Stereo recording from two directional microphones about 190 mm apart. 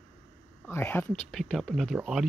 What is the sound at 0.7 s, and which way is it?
Speech, 10° left (ahead or behind).